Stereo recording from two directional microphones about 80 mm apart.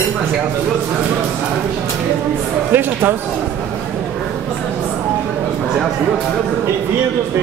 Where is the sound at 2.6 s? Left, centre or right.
Right.